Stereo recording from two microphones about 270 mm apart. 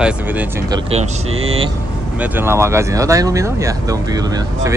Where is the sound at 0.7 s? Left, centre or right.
Right.